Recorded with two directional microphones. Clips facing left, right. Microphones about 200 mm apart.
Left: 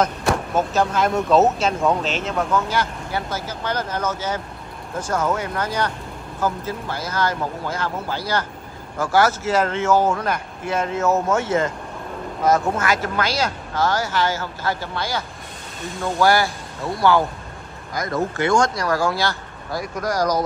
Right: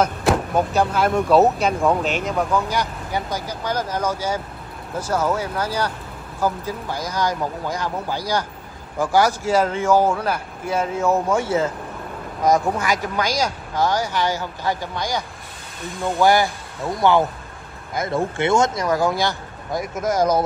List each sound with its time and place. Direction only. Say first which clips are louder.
0.0 s vehicle: right 2 dB; centre (ahead or behind)
0.6 s speech: right 1 dB; 10° right (ahead or behind)
1.8 s speech: right 1 dB; centre (ahead or behind)
2.0 s speech: right 1 dB; 15° right (ahead or behind)